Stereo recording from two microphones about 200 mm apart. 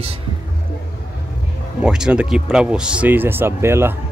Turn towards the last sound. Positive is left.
turn(degrees=-10)  # may be behind; listen again after turning